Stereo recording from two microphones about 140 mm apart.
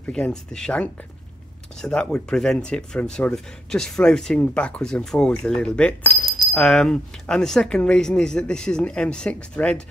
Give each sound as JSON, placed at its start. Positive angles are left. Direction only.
{"t": 0.0, "sound": "speech", "side_deg": 5}